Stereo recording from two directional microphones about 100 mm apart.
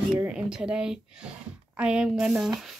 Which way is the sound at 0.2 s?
10° right (ahead or behind).